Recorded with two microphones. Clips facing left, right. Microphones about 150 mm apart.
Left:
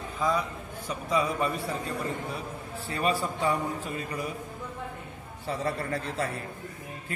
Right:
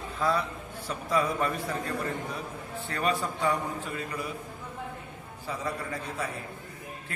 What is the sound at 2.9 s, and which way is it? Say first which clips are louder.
Speech: left 1 dB; 35° left (ahead or behind).